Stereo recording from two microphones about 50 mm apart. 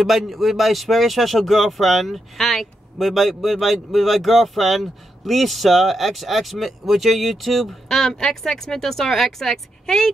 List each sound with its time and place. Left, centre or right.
0.0 s speech: centre